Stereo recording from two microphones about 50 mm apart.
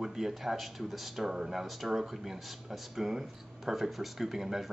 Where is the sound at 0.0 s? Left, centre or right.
Centre.